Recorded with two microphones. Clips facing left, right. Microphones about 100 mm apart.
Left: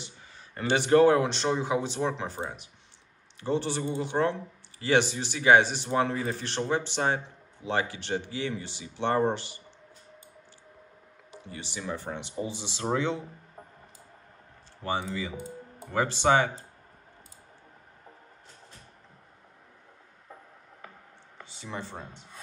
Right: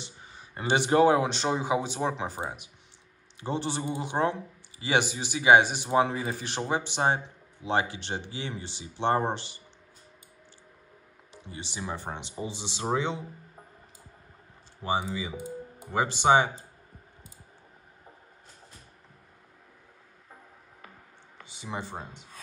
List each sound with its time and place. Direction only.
0.6 s speech: 15° right (ahead or behind)
11.5 s speech: 20° right (ahead or behind)
14.8 s speech: 10° right (ahead or behind)
21.5 s speech: 10° right (ahead or behind)